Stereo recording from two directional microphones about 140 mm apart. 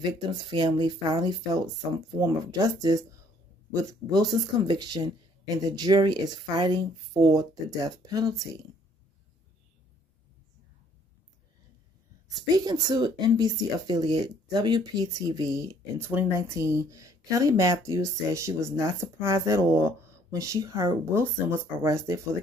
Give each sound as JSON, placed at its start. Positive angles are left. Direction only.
{"t": 0.0, "sound": "speech", "side_deg": -35}
{"t": 12.4, "sound": "speech", "side_deg": -25}